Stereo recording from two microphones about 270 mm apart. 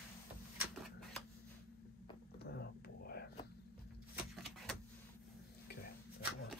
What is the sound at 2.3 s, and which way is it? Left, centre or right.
Whispering, left.